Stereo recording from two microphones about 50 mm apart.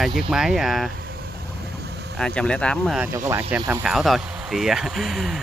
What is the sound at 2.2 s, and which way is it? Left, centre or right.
Speech, centre.